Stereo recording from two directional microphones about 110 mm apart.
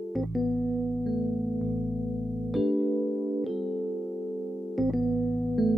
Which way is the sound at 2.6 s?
Centre (ahead or behind).